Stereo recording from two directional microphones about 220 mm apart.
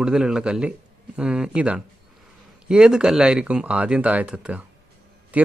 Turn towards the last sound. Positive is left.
turn(degrees=-5)  # may be behind; listen again after turning